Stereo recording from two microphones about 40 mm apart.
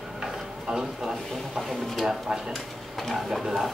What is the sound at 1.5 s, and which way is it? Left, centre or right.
Speech, centre.